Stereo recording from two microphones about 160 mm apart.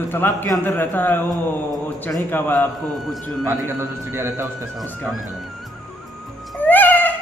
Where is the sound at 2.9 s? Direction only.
Centre (ahead or behind).